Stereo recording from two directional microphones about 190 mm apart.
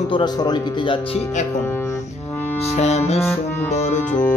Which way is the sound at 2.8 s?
35° left (ahead or behind).